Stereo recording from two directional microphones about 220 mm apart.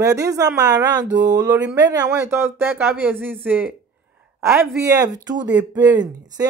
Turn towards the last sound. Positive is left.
turn(degrees=-20)  # may be behind; listen again after turning